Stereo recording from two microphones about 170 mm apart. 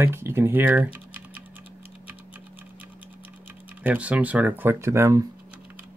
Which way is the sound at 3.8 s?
10° right (ahead or behind).